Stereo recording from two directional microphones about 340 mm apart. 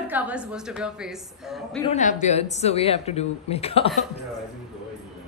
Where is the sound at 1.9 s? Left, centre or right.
Left.